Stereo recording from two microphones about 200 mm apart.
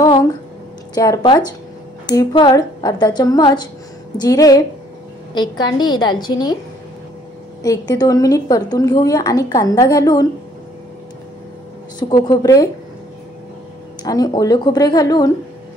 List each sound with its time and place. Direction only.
0.0 s a sound: 15° left (ahead or behind)
0.9 s a woman's voice: 20° left (ahead or behind)
7.6 s a woman's voice: 15° left (ahead or behind)
12.0 s a woman's voice: 20° left (ahead or behind)
14.0 s a woman's voice: 20° left (ahead or behind)